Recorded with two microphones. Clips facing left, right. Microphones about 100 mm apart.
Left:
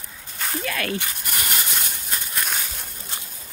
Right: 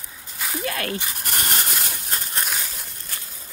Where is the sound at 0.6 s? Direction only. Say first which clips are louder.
Even; 30° right (ahead or behind).